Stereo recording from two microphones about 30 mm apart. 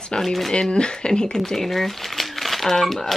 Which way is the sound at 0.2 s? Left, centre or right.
Centre.